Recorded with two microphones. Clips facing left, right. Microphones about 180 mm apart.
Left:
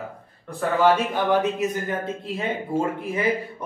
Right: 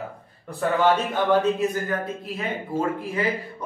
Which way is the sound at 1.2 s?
20° left (ahead or behind).